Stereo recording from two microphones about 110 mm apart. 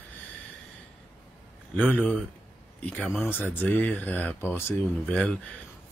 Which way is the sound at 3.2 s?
20° left (ahead or behind).